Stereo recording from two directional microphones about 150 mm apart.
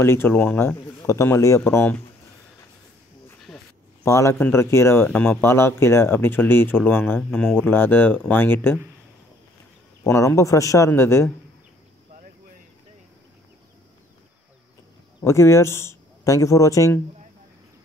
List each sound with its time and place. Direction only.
0.0 s speech: 15° left (ahead or behind)
3.5 s a sound: centre (ahead or behind)
4.0 s speech: 20° left (ahead or behind)
7.2 s speech: 5° left (ahead or behind)
10.0 s speech: 20° left (ahead or behind)
15.2 s speech: 20° left (ahead or behind)